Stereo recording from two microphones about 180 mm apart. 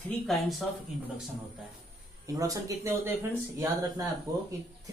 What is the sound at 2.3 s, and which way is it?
Speech, 20° right (ahead or behind).